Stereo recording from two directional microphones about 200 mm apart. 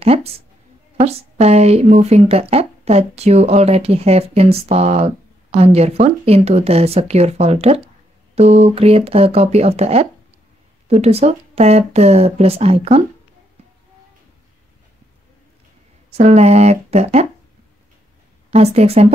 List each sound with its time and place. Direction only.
0.0 s speech: 30° right (ahead or behind)
16.1 s speech: 35° right (ahead or behind)
18.5 s speech: 30° right (ahead or behind)